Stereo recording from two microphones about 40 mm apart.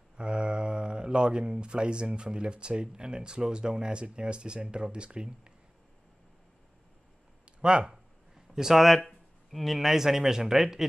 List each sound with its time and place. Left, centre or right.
0.2 s speech: right
7.6 s speech: right
7.9 s speech: centre